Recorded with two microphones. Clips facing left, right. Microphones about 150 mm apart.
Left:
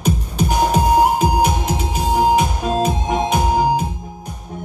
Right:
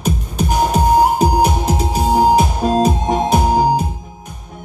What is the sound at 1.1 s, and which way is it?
Music, 35° right (ahead or behind).